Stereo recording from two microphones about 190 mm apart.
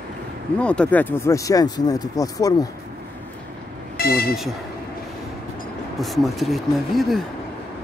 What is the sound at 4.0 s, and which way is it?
Speech, 55° left (ahead or behind).